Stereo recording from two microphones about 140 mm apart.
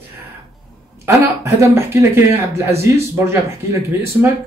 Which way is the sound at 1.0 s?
20° right (ahead or behind).